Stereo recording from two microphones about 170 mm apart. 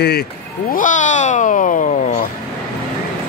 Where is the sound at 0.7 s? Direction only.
50° left (ahead or behind).